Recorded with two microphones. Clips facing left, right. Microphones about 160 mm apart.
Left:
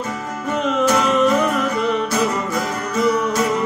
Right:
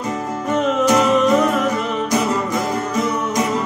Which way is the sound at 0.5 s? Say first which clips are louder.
Right 2 dB; centre (ahead or behind).